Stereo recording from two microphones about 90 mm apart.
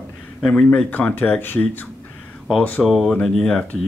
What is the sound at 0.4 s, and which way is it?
Speech, 5° left (ahead or behind).